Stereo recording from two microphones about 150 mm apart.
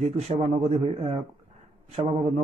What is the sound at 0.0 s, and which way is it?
Speech, 45° right (ahead or behind).